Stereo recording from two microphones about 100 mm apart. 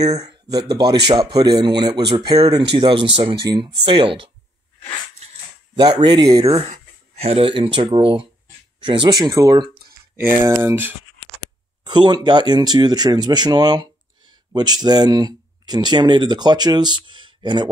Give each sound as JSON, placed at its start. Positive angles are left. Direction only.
{"t": 0.0, "sound": "speech", "side_deg": -40}
{"t": 5.8, "sound": "speech", "side_deg": -55}
{"t": 7.2, "sound": "speech", "side_deg": -80}
{"t": 10.1, "sound": "speech", "side_deg": -20}
{"t": 11.8, "sound": "speech", "side_deg": -50}